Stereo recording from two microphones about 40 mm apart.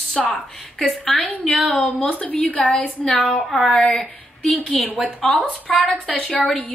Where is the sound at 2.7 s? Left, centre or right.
Centre.